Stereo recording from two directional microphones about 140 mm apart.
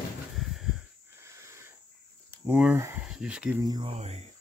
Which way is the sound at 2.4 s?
10° right (ahead or behind).